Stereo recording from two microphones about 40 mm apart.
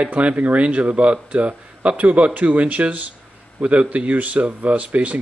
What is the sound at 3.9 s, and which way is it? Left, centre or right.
Speech, right.